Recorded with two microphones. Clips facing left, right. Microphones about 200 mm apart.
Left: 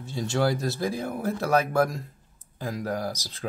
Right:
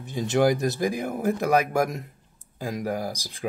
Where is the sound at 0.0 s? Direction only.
20° right (ahead or behind).